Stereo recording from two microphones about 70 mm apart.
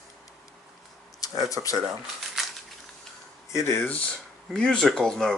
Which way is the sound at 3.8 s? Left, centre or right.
Centre.